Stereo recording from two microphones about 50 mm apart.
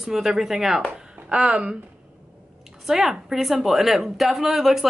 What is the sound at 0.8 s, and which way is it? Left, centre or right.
Speech, right.